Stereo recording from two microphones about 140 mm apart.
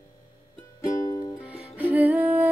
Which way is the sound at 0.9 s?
25° left (ahead or behind).